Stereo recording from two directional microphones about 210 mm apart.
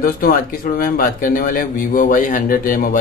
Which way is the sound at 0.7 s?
45° left (ahead or behind).